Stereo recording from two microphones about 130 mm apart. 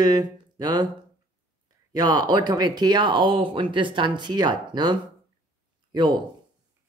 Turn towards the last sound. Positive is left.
turn(degrees=-35)  # may be behind; listen again after turning